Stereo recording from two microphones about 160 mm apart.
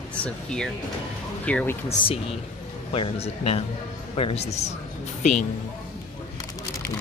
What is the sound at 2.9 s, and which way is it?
A man's voice, 35° left (ahead or behind).